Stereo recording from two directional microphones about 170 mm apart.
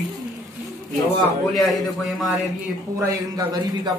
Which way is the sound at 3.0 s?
20° right (ahead or behind).